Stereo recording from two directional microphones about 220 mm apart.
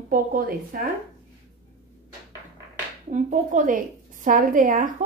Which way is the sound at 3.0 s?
35° right (ahead or behind).